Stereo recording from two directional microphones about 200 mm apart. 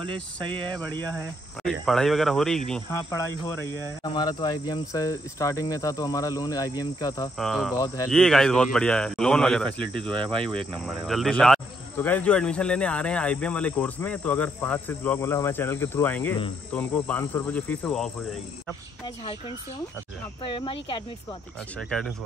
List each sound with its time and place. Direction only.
0.0 s speech: 25° right (ahead or behind)
0.7 s speech: 5° left (ahead or behind)
3.1 s speech: 15° left (ahead or behind)
7.3 s speech: centre (ahead or behind)
7.7 s speech: 15° left (ahead or behind)
8.1 s speech: centre (ahead or behind)
20.4 s speech: 25° left (ahead or behind)
21.7 s speech: centre (ahead or behind)